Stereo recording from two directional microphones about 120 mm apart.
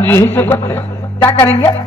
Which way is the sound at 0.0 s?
20° left (ahead or behind).